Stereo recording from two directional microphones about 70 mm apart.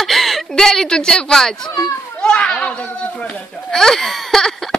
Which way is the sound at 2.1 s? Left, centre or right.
Centre.